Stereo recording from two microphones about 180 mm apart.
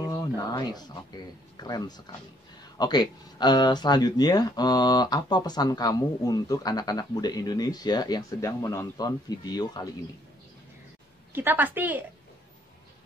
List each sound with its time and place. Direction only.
0.0 s speech: 25° left (ahead or behind)
11.3 s a woman's voice: 10° right (ahead or behind)